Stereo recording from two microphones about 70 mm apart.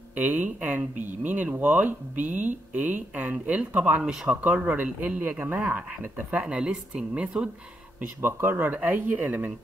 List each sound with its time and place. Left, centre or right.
0.1 s speech: right
4.0 s a woman's voice: centre
4.6 s speech: right
6.4 s a woman's voice: centre
8.0 s speech: right